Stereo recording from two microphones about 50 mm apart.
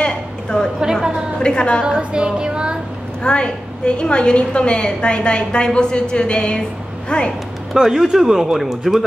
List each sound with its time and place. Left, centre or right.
0.0 s a sound: centre
1.4 s a woman's voice: centre
1.9 s speech: centre
3.3 s a woman's voice: centre
7.7 s speech: centre